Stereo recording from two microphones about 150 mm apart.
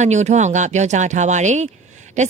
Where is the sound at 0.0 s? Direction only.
50° right (ahead or behind).